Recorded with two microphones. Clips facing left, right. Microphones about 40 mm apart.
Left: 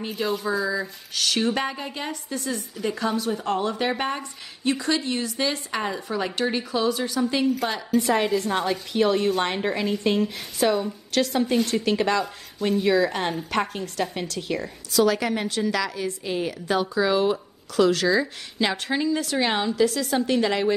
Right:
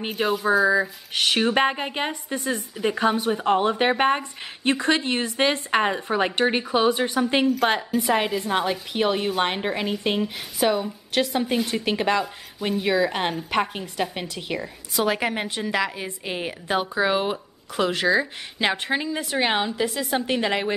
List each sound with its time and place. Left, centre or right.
0.1 s a woman's voice: centre
0.7 s a woman's voice: right
7.9 s a woman's voice: centre